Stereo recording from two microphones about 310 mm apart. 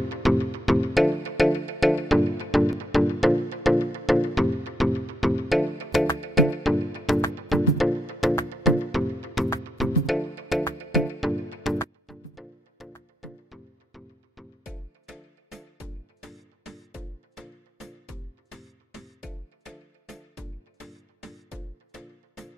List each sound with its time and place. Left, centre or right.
0.2 s music: centre